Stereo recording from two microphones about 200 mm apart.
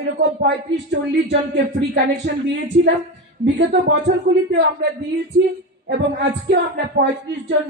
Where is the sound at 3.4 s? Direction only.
60° right (ahead or behind).